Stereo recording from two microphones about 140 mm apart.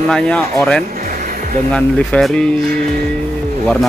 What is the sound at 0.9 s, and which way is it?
Music, 90° right.